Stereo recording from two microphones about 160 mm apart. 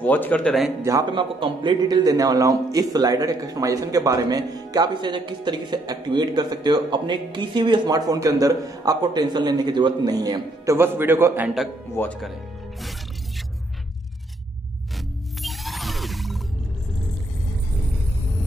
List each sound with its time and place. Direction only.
0.0 s a man's voice: 10° left (ahead or behind)
1.1 s a man's voice: 30° right (ahead or behind); by 11.5 s 15° right (ahead or behind)
12.0 s a man's voice: 10° left (ahead or behind)
15.0 s music: centre (ahead or behind)